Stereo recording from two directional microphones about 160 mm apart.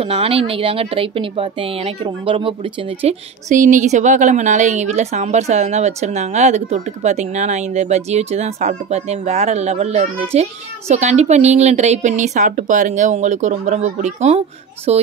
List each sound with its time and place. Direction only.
0.0 s speech: 35° right (ahead or behind)